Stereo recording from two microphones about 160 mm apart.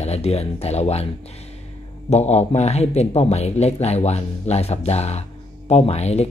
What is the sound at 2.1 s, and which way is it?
Speech, 45° left (ahead or behind).